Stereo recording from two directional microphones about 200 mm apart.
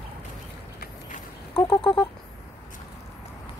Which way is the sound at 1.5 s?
25° left (ahead or behind).